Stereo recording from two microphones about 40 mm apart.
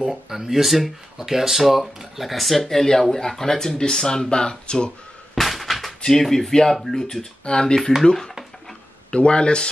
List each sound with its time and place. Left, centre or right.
0.3 s speech: centre; by 4.9 s left
5.3 s a sound: centre
6.0 s speech: centre
7.4 s speech: centre
9.1 s speech: left